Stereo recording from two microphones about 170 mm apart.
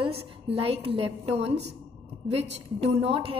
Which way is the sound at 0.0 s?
35° right (ahead or behind).